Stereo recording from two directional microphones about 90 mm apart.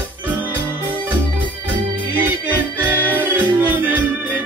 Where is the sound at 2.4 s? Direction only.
20° right (ahead or behind).